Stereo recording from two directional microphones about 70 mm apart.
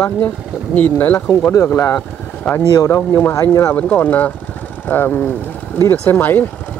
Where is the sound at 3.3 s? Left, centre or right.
Left.